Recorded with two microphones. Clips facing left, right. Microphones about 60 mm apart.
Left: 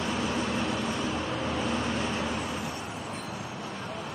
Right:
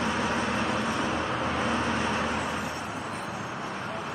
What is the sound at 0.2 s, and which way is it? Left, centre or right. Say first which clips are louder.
Vehicle: right 2 dB; right.